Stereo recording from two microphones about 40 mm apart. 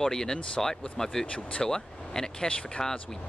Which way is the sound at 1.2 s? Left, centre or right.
Left.